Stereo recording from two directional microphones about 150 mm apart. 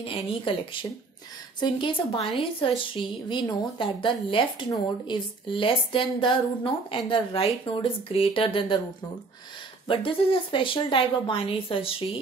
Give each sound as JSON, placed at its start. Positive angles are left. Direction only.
{"t": 0.0, "sound": "a woman's voice", "side_deg": 35}
{"t": 1.6, "sound": "a woman's voice", "side_deg": 35}
{"t": 9.8, "sound": "a woman's voice", "side_deg": 35}